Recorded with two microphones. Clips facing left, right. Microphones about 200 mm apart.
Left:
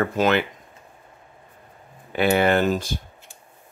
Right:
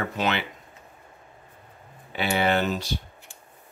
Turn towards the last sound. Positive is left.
turn(degrees=50)  # may be behind; listen again after turning